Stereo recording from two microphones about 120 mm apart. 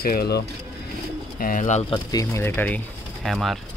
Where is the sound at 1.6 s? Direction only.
80° left.